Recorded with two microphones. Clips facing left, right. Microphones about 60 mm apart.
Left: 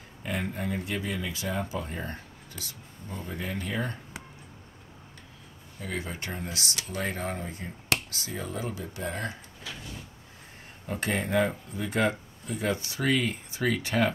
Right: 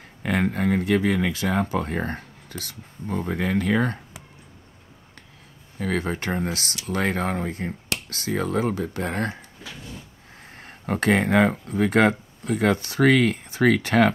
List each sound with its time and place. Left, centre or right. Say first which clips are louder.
0.2 s speech: right 9 dB; right
5.8 s speech: right 9 dB; right
10.6 s speech: right 9 dB; right